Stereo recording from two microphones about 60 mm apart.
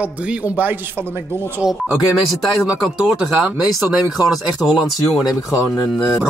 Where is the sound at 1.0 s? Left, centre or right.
Right.